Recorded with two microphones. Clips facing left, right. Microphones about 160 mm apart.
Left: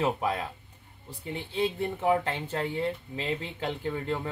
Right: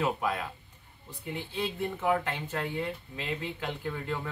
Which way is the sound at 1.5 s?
25° left (ahead or behind).